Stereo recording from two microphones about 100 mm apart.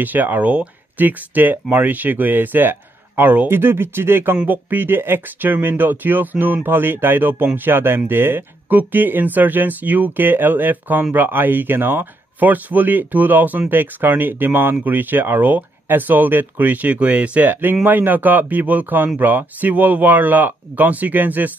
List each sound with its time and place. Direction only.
0.0 s speech: 20° right (ahead or behind)